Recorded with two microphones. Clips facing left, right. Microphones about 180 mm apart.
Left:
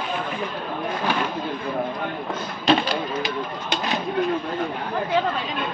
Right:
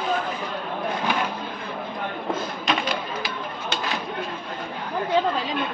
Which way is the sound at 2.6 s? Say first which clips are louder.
Left 9 dB; 30° left (ahead or behind).